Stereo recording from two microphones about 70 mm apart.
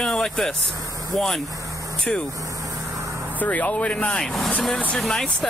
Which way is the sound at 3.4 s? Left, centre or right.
Left.